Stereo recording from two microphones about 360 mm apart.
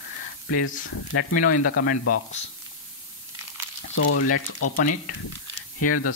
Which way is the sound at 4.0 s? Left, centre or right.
Left.